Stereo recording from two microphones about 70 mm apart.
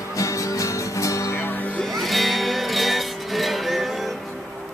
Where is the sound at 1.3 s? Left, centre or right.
Left.